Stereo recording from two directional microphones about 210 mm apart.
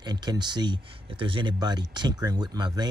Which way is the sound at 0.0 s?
20° right (ahead or behind).